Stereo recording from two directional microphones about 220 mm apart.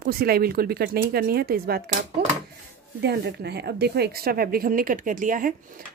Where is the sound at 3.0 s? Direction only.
45° right (ahead or behind).